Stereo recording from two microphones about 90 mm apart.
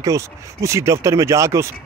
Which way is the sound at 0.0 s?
35° right (ahead or behind).